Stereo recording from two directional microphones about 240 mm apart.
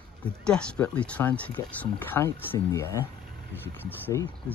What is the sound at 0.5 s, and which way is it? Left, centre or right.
Speech, centre.